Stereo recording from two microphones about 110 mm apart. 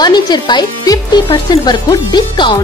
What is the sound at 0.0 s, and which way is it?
Speech, 40° left (ahead or behind).